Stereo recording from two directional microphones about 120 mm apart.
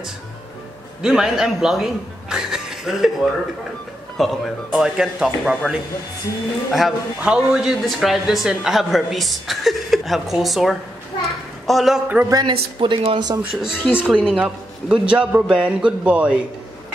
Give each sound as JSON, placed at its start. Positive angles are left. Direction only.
{"t": 1.0, "sound": "a man's voice", "side_deg": -5}
{"t": 6.7, "sound": "a man's voice", "side_deg": -5}
{"t": 12.3, "sound": "speech", "side_deg": -35}
{"t": 13.4, "sound": "a man's voice", "side_deg": -5}